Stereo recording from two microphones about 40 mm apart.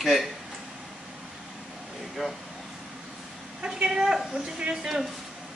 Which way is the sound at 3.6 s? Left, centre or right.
Right.